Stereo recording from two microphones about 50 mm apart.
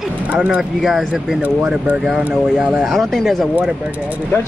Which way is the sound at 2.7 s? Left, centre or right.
Centre.